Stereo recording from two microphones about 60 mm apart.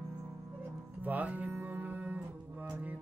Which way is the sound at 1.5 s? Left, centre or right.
Right.